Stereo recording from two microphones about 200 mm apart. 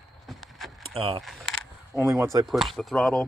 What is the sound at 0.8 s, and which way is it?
Speech, 25° right (ahead or behind).